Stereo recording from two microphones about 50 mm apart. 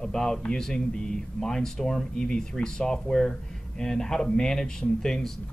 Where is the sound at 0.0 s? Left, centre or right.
Centre.